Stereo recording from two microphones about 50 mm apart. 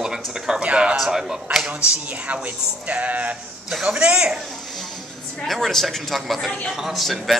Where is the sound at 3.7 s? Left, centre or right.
Centre.